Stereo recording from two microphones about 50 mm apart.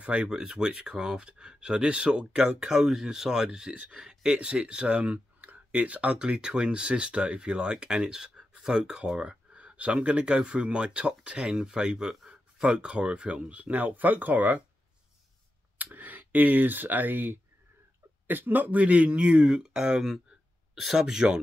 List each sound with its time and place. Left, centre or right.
0.0 s speech: right
15.8 s speech: right; by 20.1 s centre
20.7 s speech: centre